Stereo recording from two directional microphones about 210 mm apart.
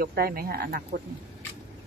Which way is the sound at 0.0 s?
45° right (ahead or behind).